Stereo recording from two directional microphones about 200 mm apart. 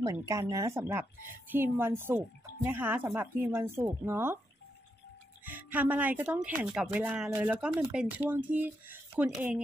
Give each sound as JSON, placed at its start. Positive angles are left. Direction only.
{"t": 0.2, "sound": "speech", "side_deg": -15}
{"t": 5.4, "sound": "speech", "side_deg": -10}